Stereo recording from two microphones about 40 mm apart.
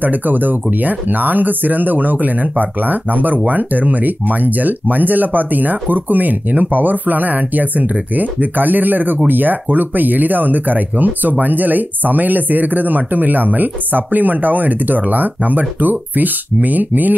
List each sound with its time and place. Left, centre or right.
0.0 s speech: right